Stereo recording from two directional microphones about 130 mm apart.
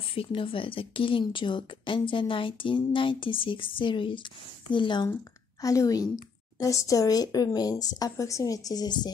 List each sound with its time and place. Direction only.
0.1 s a woman's voice: 45° left (ahead or behind)
5.6 s a woman's voice: 25° left (ahead or behind)